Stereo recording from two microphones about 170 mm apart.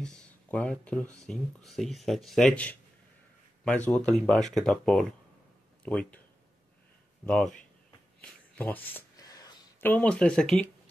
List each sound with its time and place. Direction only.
0.0 s a sound: 5° left (ahead or behind)
1.2 s speech: centre (ahead or behind)
3.9 s speech: 5° left (ahead or behind)
7.2 s speech: 5° left (ahead or behind)
9.1 s a sound: 20° left (ahead or behind)
9.8 s speech: 10° left (ahead or behind)